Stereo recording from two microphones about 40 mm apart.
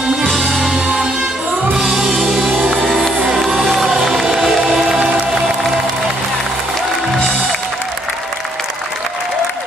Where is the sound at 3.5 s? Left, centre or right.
Centre.